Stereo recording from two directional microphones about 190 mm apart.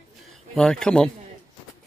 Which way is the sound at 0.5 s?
5° left (ahead or behind).